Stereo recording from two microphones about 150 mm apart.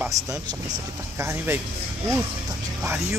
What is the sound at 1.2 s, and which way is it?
Speech, 15° right (ahead or behind).